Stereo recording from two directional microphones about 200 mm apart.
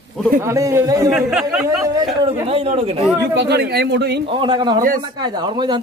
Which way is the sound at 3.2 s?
55° right (ahead or behind).